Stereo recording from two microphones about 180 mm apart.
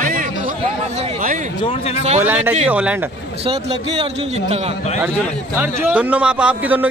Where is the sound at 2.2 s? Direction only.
10° right (ahead or behind).